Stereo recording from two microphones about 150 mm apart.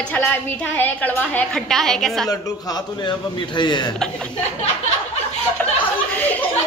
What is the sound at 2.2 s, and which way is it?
Speech, 25° left (ahead or behind).